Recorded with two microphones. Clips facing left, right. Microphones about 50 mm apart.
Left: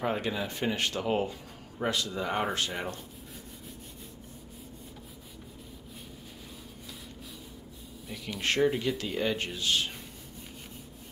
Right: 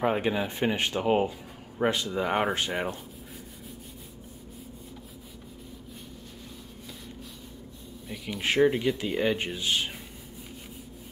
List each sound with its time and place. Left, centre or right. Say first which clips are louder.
0.0 s speech: right 5 dB; right
8.1 s speech: right 2 dB; centre